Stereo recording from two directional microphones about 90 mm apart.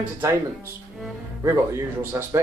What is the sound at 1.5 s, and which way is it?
Speech, 30° right (ahead or behind).